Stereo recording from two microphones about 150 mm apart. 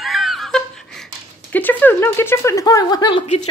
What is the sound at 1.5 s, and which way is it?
Speech, 10° left (ahead or behind).